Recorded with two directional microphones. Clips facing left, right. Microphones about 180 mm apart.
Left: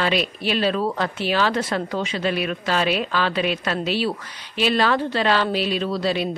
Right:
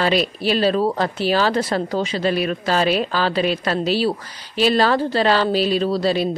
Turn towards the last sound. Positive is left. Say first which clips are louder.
# right 4 dB
turn(degrees=-35)  # may be behind; listen again after turning